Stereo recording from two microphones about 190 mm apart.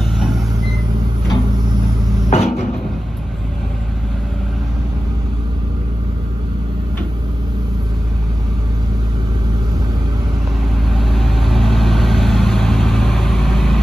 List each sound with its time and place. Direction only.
0.0 s vehicle: centre (ahead or behind)
2.2 s cupboard open or close: 35° left (ahead or behind)
10.8 s vehicle: centre (ahead or behind)